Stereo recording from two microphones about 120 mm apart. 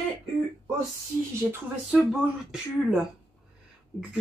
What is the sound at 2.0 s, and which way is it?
Speech, 5° right (ahead or behind).